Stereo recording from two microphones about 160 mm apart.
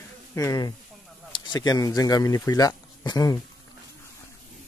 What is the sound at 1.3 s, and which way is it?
Speech, 25° left (ahead or behind).